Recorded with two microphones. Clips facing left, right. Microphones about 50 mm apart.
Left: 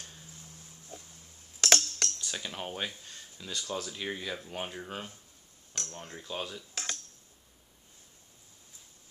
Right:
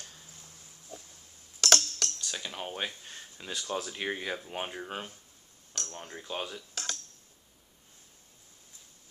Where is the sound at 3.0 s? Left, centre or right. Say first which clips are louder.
Right 2 dB; right.